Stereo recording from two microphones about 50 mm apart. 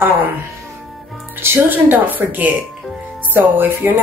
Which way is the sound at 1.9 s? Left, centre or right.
Right.